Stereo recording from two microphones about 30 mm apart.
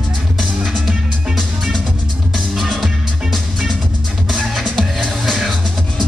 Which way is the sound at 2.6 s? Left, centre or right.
Centre.